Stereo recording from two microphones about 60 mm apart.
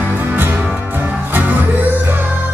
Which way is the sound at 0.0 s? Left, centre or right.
Right.